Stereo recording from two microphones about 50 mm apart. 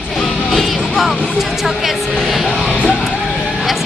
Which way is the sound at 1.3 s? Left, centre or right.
Centre.